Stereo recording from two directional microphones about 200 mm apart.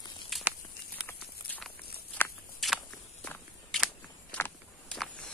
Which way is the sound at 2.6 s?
5° left (ahead or behind).